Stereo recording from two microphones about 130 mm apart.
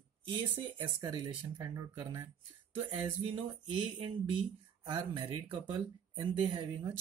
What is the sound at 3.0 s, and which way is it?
Speech, 45° right (ahead or behind).